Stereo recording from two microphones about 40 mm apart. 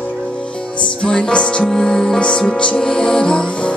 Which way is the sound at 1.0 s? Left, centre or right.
Left.